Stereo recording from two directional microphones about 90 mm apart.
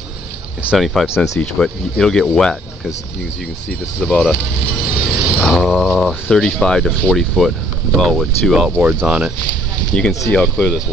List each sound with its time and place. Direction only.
0.7 s speech: centre (ahead or behind)
1.1 s speech: 35° left (ahead or behind)
1.4 s speech: 5° left (ahead or behind)
4.0 s speech: 10° left (ahead or behind)
5.0 s vehicle: 5° right (ahead or behind)
5.5 s speech: centre (ahead or behind)
6.3 s speech: 10° left (ahead or behind)
8.8 s speech: 10° right (ahead or behind)
9.9 s speech: 10° left (ahead or behind)